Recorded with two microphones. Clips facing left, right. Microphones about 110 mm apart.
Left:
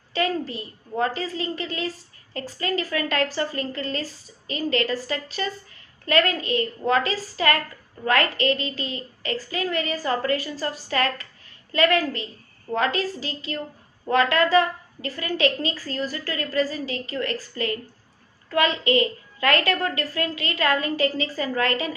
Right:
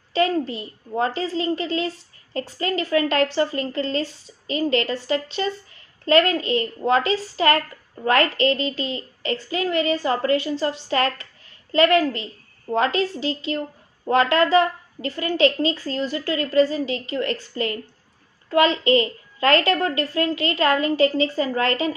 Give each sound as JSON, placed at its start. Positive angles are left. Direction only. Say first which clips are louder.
{"t": 0.1, "sound": "a woman's voice", "louder": "right 4 dB", "side_deg": -25}